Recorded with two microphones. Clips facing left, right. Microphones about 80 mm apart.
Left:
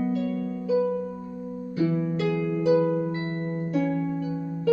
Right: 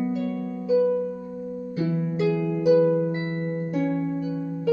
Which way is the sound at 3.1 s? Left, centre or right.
Right.